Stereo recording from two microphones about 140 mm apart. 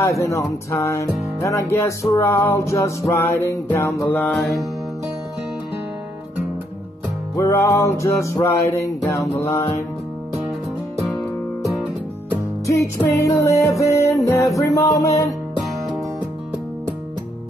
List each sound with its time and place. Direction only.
0.0 s music: 20° left (ahead or behind)
7.3 s music: 20° left (ahead or behind)
12.6 s music: 20° left (ahead or behind)